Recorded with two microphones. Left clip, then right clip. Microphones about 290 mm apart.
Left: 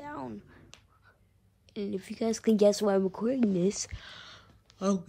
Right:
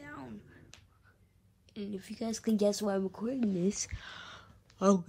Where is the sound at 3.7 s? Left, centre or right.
Centre.